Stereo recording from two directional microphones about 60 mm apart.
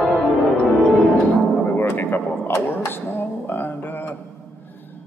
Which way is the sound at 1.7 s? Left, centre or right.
Left.